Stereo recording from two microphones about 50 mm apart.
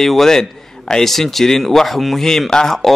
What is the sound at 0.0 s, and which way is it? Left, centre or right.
A man's voice, centre.